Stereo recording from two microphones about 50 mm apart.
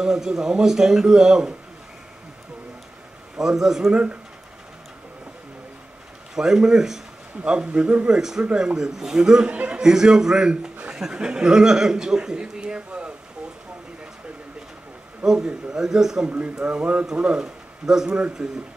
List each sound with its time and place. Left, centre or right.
0.0 s a man's voice: centre
3.3 s a man's voice: centre
6.3 s a man's voice: centre
9.8 s a man's voice: centre
15.2 s a man's voice: centre
16.3 s a man's voice: right